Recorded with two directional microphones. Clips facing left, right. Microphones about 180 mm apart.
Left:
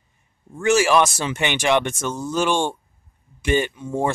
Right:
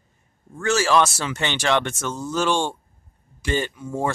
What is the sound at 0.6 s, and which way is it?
Speech, 15° left (ahead or behind).